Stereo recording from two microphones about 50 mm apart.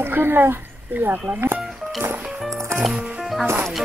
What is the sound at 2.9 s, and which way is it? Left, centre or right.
Music, right.